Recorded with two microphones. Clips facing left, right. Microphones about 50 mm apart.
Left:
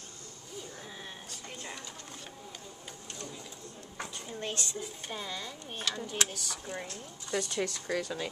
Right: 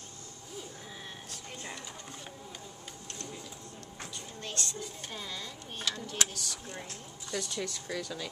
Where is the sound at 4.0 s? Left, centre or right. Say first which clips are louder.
Left 5 dB; left.